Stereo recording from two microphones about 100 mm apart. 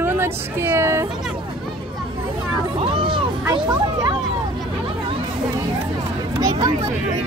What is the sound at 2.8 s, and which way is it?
Music, 55° right (ahead or behind).